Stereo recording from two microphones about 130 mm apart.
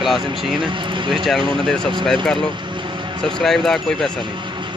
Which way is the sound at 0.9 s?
40° right (ahead or behind).